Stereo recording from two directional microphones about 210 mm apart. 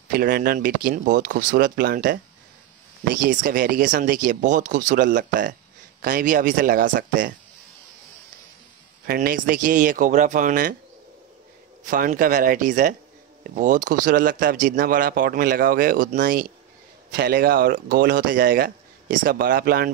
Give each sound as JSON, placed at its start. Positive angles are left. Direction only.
{"t": 0.1, "sound": "speech", "side_deg": -45}
{"t": 3.2, "sound": "speech", "side_deg": -40}
{"t": 9.0, "sound": "speech", "side_deg": -45}
{"t": 11.8, "sound": "speech", "side_deg": -40}